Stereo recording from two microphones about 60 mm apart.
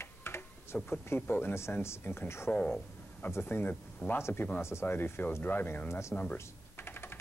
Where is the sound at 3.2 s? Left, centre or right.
Left.